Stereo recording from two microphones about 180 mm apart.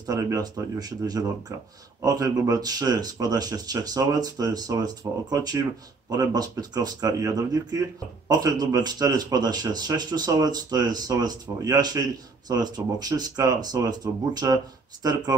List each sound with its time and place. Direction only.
0.0 s speech: 20° right (ahead or behind)